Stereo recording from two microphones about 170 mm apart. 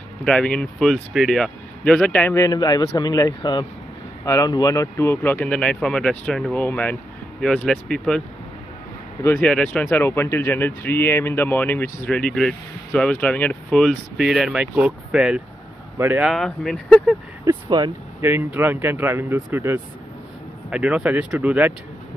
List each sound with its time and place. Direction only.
0.2 s speech: 5° left (ahead or behind)
2.3 s a man's voice: 20° left (ahead or behind); by 8.2 s centre (ahead or behind)
9.4 s speech: 5° left (ahead or behind); by 16.3 s 15° right (ahead or behind)
16.3 s speech: centre (ahead or behind)
17.5 s speech: 25° right (ahead or behind)
18.2 s speech: 10° right (ahead or behind)